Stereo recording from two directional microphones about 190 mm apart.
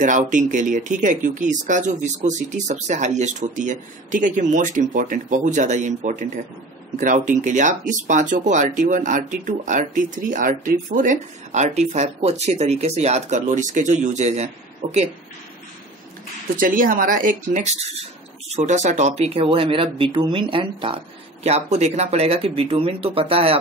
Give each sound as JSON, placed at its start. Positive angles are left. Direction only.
{"t": 0.0, "sound": "speech", "side_deg": -40}
{"t": 16.5, "sound": "speech", "side_deg": -45}